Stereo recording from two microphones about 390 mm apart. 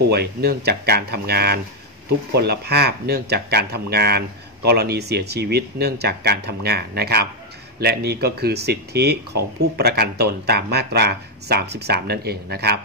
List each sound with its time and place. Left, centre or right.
0.1 s speech: right